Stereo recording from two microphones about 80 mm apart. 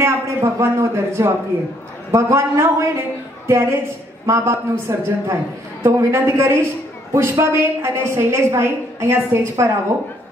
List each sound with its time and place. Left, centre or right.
0.0 s a man's voice: right